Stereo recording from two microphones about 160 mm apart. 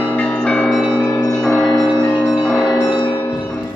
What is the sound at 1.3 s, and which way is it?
Music, 5° left (ahead or behind).